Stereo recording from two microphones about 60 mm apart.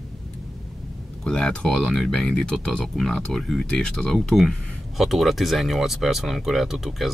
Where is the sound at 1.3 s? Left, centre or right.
Centre.